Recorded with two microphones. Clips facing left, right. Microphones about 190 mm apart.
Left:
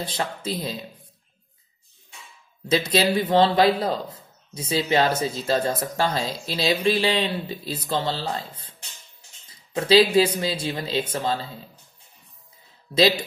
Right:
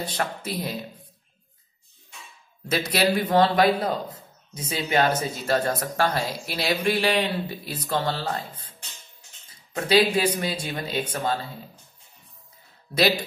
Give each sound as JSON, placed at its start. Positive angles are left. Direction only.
{"t": 0.0, "sound": "speech", "side_deg": 20}
{"t": 2.7, "sound": "speech", "side_deg": 20}
{"t": 9.8, "sound": "speech", "side_deg": 30}
{"t": 12.9, "sound": "speech", "side_deg": 20}